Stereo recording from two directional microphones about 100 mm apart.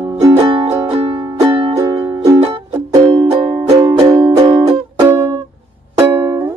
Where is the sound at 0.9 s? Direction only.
70° right (ahead or behind).